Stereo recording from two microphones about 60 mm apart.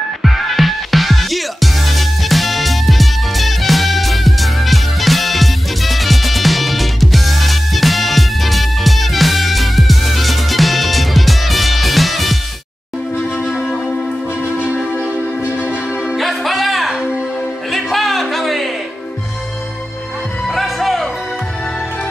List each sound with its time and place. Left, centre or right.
0.2 s music: centre
13.5 s music: centre
15.5 s music: left
16.2 s music: centre
17.6 s a sound: centre
20.4 s music: centre